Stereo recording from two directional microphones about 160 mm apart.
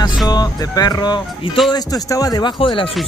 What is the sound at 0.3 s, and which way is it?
A man's voice, 25° left (ahead or behind).